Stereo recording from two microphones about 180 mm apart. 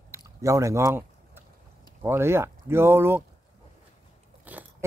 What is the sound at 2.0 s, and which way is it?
Speech, 15° right (ahead or behind).